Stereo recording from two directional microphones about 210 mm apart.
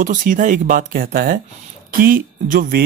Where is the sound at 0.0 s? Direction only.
40° right (ahead or behind).